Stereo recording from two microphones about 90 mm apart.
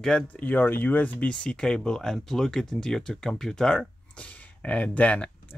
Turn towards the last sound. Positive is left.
turn(degrees=15)  # may be behind; listen again after turning